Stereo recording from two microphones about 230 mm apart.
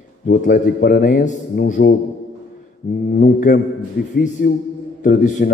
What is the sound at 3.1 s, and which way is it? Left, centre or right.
A man's voice, left.